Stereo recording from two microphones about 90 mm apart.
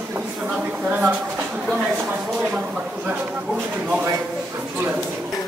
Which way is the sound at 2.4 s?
15° right (ahead or behind).